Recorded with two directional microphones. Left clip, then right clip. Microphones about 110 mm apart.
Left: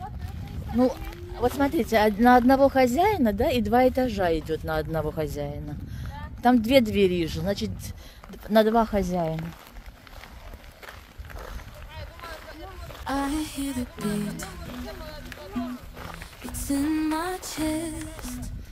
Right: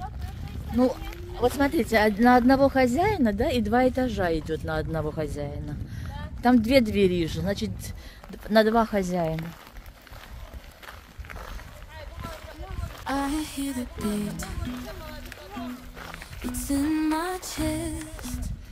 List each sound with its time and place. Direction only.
1.4 s speech: 15° right (ahead or behind)
1.8 s music: centre (ahead or behind)
2.8 s speech: 15° left (ahead or behind)
5.9 s speech: 5° left (ahead or behind)
8.5 s music: centre (ahead or behind)
10.9 s a sound: centre (ahead or behind)
13.0 s a sound: centre (ahead or behind)
16.5 s music: centre (ahead or behind)